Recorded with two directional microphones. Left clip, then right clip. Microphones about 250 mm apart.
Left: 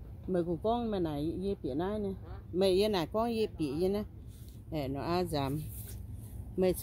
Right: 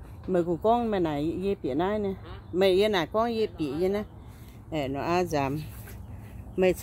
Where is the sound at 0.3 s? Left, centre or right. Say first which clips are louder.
Right 8 dB; centre.